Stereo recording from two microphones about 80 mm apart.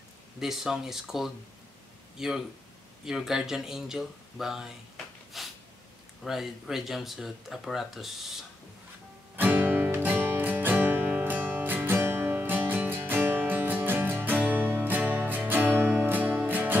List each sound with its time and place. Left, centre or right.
0.4 s speech: centre
5.3 s snort: centre
6.2 s speech: centre
9.4 s music: right